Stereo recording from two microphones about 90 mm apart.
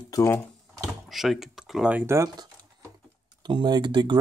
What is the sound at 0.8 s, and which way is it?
Door, centre (ahead or behind).